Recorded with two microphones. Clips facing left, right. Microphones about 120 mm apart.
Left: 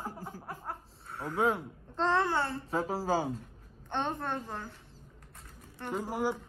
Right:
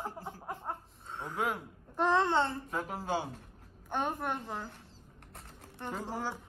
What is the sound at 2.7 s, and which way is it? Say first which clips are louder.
Speech: left 4 dB; 30° left (ahead or behind).